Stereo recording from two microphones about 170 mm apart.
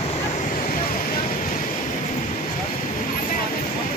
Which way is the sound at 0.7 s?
55° left (ahead or behind).